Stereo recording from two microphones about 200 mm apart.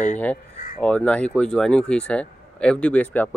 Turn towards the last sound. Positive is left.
turn(degrees=5)  # may be behind; listen again after turning